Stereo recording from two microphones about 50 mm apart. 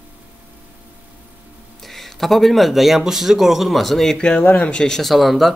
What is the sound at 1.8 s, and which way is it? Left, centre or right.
Speech, centre.